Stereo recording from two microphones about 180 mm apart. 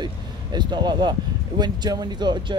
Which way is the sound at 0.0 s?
25° right (ahead or behind).